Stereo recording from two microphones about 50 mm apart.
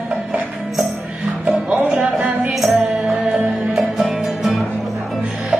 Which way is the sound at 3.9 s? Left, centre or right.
Centre.